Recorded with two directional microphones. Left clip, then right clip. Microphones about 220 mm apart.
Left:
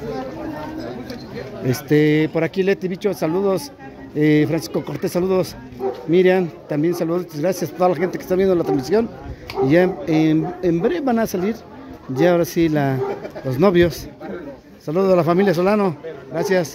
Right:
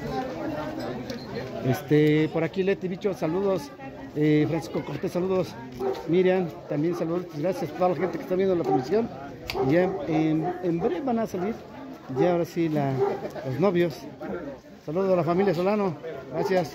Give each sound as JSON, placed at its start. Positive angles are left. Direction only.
{"t": 1.7, "sound": "speech", "side_deg": 25}